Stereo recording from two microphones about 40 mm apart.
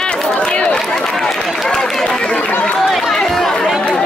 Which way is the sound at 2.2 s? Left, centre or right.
Left.